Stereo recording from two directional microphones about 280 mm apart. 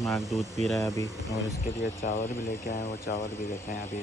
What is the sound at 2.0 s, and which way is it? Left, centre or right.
Speech, left.